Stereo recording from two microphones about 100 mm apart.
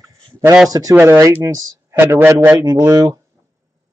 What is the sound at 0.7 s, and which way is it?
Speech, 35° right (ahead or behind).